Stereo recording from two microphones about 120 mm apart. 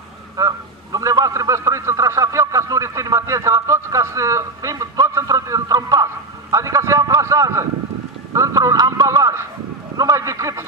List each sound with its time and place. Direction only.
0.4 s a man's voice: 25° right (ahead or behind)